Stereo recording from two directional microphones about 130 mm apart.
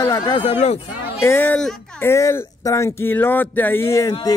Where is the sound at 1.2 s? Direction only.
20° left (ahead or behind).